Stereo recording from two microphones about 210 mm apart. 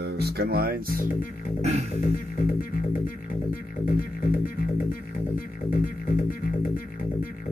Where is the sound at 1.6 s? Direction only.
30° right (ahead or behind).